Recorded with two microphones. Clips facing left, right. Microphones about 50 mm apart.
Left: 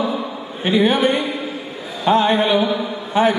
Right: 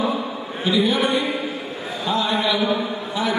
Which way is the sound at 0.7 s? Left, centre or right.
Left.